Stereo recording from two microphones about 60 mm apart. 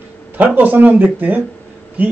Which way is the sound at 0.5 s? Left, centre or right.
Right.